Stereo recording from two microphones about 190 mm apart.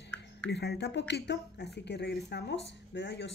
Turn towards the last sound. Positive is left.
turn(degrees=70)  # may be behind; listen again after turning